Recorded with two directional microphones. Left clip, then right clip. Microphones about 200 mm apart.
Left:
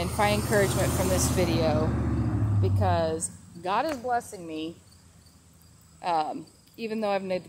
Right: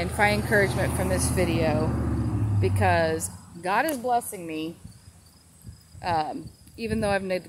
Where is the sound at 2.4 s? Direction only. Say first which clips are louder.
Right 6 dB; 20° right (ahead or behind).